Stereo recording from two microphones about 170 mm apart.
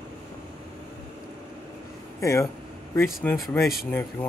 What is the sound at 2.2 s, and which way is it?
Speech, 15° left (ahead or behind).